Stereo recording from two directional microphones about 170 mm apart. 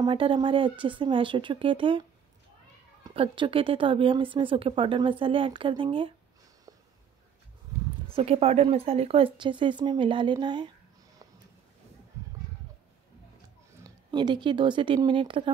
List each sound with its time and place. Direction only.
0.0 s speech: 30° right (ahead or behind)
8.1 s speech: 35° right (ahead or behind)
13.8 s speech: 25° right (ahead or behind)